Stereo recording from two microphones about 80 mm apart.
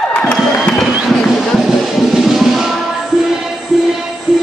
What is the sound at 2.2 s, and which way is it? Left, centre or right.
Music, centre.